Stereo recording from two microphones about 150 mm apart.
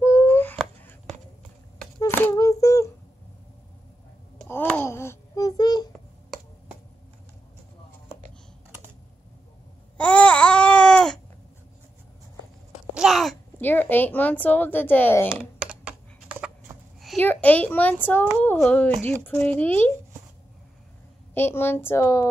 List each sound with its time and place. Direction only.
0.0 s a sound: 15° left (ahead or behind)
2.0 s humming: 20° left (ahead or behind)
4.5 s wail: 15° left (ahead or behind)
9.9 s babbling: 10° left (ahead or behind)
12.9 s a sound: centre (ahead or behind)
15.6 s computer keyboard: 5° right (ahead or behind)
16.3 s clip-clop: 10° right (ahead or behind)
17.2 s a child's voice: 10° left (ahead or behind)
21.4 s a child's voice: 15° left (ahead or behind)